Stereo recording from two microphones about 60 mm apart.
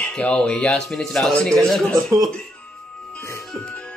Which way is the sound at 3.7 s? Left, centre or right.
Centre.